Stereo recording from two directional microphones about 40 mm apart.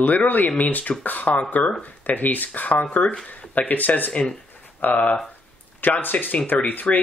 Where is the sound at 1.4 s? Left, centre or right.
Left.